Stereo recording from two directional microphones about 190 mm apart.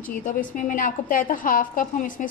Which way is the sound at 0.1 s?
45° left (ahead or behind).